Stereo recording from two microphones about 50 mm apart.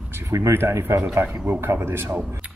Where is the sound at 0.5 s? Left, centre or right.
Right.